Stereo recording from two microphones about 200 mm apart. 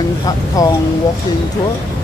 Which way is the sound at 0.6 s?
15° left (ahead or behind).